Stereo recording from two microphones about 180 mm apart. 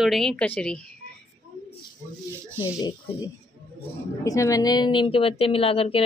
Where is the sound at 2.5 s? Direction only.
10° right (ahead or behind).